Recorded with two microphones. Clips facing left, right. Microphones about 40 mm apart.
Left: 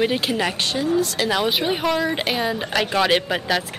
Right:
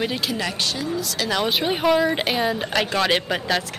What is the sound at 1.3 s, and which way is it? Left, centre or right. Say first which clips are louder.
Speech: left 1 dB; centre.